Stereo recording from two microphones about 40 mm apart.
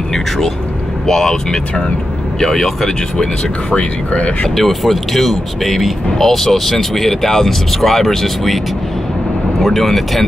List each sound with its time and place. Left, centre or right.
1.0 s speech: centre
3.7 s speech: left
4.6 s speech: centre
9.6 s speech: centre